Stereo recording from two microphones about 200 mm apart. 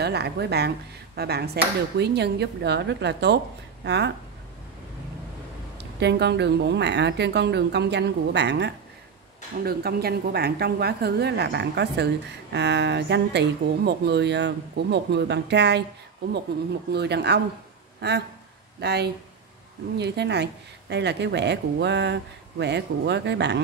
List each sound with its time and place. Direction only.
0.0 s speech: 55° right (ahead or behind)
5.8 s a woman's voice: 60° right (ahead or behind)
16.9 s speech: 55° right (ahead or behind)